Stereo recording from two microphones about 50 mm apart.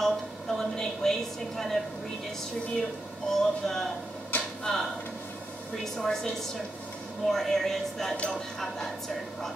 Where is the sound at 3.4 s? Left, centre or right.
Centre.